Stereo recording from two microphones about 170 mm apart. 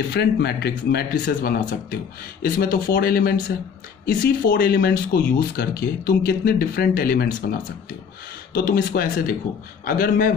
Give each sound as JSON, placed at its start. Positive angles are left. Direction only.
{"t": 0.1, "sound": "speech", "side_deg": 75}
{"t": 8.5, "sound": "a man's voice", "side_deg": 60}